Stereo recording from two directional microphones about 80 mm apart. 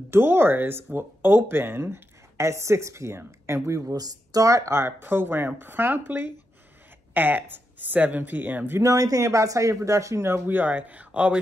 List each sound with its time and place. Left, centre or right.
0.1 s speech: right
3.8 s speech: right
8.8 s speech: right; by 11.3 s centre